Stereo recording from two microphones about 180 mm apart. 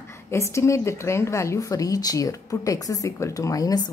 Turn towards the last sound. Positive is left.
turn(degrees=20)  # may be behind; listen again after turning